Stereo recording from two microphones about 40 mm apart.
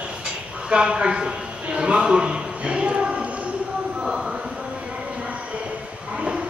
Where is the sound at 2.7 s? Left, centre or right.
Right.